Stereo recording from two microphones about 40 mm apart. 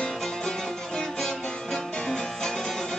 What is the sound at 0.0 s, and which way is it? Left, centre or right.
Music, centre.